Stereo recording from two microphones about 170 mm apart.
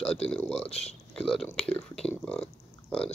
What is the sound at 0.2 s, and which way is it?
Speech, 5° left (ahead or behind).